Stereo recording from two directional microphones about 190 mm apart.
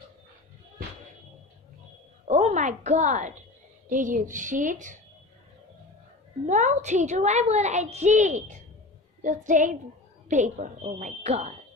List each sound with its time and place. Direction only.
2.2 s a woman's voice: 35° right (ahead or behind)
6.4 s a woman's voice: 40° right (ahead or behind)